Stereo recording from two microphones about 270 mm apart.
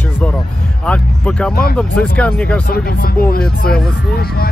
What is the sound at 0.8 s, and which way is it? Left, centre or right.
Music, centre.